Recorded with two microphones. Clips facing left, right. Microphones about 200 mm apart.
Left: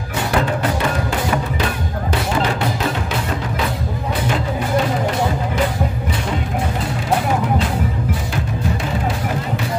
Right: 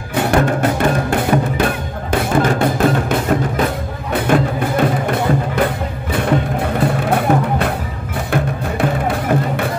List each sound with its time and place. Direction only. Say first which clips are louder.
0.1 s music: right 5 dB; 50° right (ahead or behind)
6.8 s music: right 5 dB; 60° right (ahead or behind)
8.8 s music: right 5 dB; 55° right (ahead or behind)